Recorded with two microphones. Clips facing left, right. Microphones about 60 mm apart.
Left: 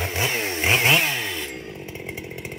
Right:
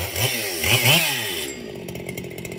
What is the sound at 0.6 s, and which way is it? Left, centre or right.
Chainsaw, left.